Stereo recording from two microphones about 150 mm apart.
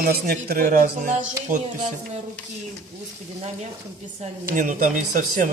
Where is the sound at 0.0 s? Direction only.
90° right; by 0.7 s 70° right (ahead or behind).